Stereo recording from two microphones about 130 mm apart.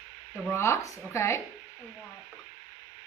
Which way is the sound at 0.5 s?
20° left (ahead or behind).